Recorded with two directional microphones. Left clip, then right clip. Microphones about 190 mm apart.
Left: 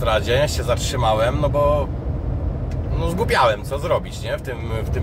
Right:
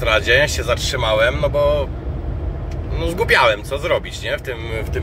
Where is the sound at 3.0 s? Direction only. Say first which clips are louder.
Right 3 dB; 10° left (ahead or behind).